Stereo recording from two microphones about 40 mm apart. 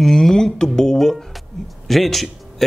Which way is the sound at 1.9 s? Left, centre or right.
Centre.